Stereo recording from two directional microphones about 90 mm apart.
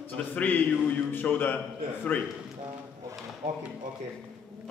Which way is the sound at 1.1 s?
20° left (ahead or behind).